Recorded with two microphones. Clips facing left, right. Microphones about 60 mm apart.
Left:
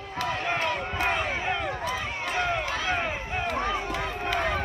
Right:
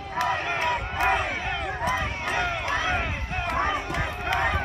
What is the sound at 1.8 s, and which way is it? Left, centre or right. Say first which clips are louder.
Run: right 3 dB; right.